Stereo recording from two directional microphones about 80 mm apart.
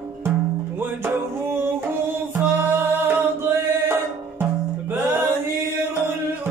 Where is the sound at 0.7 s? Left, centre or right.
Right.